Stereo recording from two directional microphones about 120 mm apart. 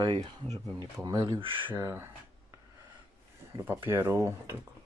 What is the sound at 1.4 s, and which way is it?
Speech, 45° right (ahead or behind).